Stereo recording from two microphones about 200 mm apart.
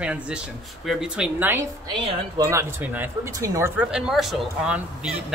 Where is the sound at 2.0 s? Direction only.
25° right (ahead or behind).